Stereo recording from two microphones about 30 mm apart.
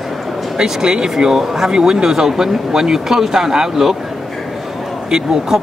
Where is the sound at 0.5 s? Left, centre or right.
Right.